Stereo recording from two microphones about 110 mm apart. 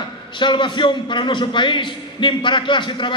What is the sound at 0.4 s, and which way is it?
A man's voice, 45° left (ahead or behind).